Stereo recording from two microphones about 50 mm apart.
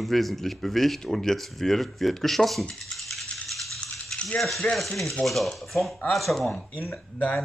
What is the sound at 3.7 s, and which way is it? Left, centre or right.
Rattle, centre.